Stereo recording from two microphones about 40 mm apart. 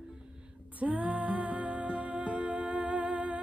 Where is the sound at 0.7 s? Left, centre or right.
Right.